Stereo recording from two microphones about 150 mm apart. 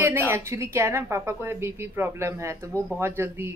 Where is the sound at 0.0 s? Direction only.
15° right (ahead or behind).